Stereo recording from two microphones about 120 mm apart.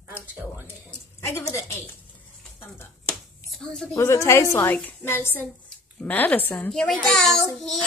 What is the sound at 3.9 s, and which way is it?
A woman's voice, 25° left (ahead or behind).